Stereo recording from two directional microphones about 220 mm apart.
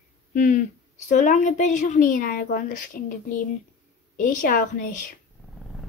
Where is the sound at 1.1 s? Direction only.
35° left (ahead or behind).